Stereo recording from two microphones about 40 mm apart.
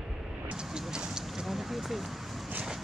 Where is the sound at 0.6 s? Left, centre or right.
Centre.